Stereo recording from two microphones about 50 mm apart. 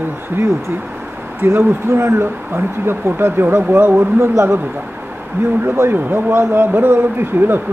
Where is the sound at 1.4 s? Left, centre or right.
Right.